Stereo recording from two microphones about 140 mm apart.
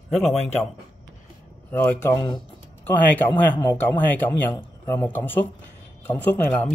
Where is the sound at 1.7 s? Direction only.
15° left (ahead or behind).